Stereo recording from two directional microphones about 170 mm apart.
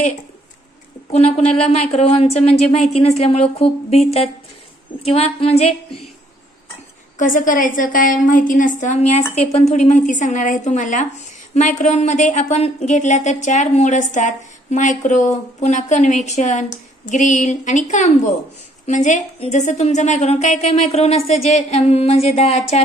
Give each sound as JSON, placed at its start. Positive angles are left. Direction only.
{"t": 1.1, "sound": "a woman's voice", "side_deg": 40}
{"t": 7.2, "sound": "a woman's voice", "side_deg": 50}